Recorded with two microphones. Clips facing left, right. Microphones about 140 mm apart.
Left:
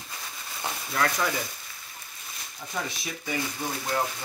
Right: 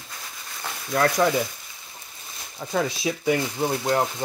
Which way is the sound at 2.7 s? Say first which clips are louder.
Right 9 dB; 75° right (ahead or behind).